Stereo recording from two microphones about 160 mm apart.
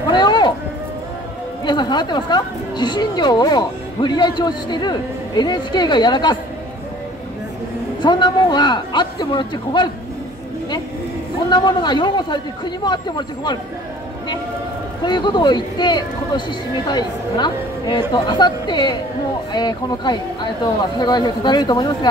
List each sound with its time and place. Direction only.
0.1 s a sound: 25° left (ahead or behind)
1.7 s a woman's voice: 25° left (ahead or behind)
8.0 s a woman's voice: 30° left (ahead or behind)
11.4 s a woman's voice: 25° left (ahead or behind)
15.0 s a woman's voice: 25° left (ahead or behind)